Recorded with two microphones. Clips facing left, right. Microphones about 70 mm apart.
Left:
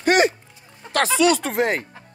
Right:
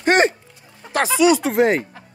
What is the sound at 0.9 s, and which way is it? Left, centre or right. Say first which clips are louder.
Speech: right 2 dB; centre.